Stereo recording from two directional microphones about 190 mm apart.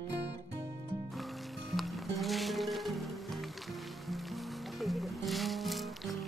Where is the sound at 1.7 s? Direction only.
Centre (ahead or behind).